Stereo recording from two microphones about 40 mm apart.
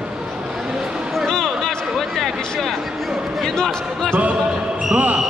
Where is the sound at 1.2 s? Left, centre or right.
Centre.